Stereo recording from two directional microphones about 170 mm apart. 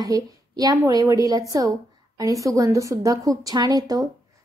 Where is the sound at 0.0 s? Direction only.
20° right (ahead or behind).